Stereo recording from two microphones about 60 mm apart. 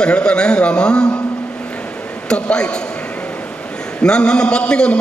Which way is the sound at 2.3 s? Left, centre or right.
Centre.